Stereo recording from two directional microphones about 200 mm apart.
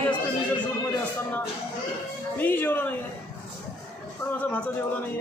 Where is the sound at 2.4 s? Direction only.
10° left (ahead or behind).